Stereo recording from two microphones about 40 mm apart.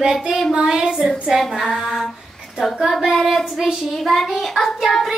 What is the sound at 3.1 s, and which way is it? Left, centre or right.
Child singing, centre.